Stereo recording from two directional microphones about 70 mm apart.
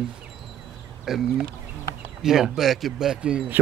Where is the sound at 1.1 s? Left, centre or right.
Centre.